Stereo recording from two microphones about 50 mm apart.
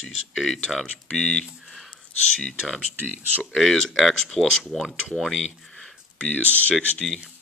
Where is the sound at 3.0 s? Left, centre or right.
Right.